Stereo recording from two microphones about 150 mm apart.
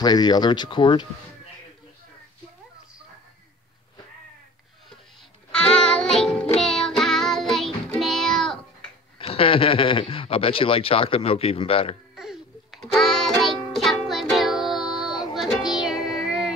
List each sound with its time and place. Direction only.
0.0 s speech: 25° left (ahead or behind)
5.5 s music: 5° left (ahead or behind)
9.2 s speech: 40° left (ahead or behind)
12.2 s music: centre (ahead or behind)